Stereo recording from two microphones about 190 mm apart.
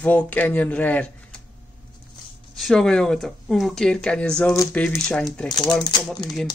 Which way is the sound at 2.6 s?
Centre (ahead or behind).